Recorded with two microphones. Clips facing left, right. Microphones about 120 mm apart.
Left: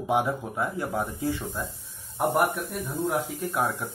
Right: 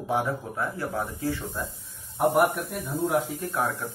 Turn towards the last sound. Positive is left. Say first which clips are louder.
# left 1 dB
turn(degrees=15)  # may be behind; listen again after turning